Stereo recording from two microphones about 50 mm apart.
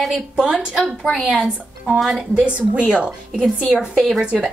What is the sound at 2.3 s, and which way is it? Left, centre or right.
A woman's voice, right.